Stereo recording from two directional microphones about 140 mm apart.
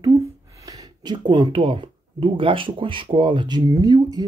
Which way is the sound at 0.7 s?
30° right (ahead or behind).